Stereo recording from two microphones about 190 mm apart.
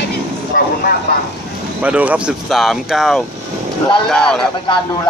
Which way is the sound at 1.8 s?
10° right (ahead or behind).